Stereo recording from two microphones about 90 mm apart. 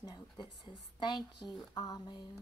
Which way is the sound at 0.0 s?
55° left (ahead or behind).